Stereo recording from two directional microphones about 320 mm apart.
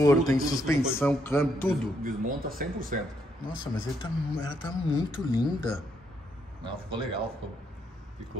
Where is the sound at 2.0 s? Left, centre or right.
Right.